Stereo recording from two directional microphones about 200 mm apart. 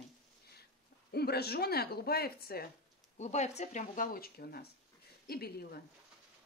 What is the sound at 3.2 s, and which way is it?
Speech, 35° left (ahead or behind).